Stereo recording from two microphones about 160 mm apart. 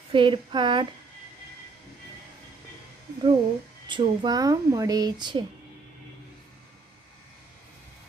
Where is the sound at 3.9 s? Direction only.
30° right (ahead or behind).